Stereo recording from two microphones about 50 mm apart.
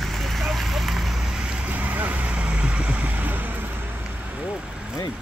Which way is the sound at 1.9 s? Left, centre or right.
Right.